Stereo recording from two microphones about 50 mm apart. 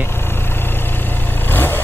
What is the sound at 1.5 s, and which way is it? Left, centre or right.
Vehicle, left.